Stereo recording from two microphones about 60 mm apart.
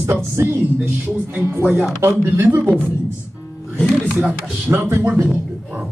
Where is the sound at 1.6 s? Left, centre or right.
Right.